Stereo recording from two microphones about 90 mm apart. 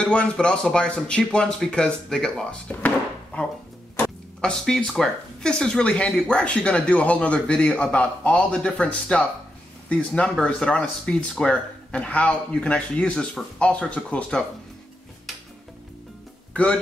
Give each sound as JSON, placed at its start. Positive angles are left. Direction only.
{"t": 0.0, "sound": "speech", "side_deg": 10}
{"t": 2.7, "sound": "speech", "side_deg": 20}
{"t": 4.4, "sound": "speech", "side_deg": 10}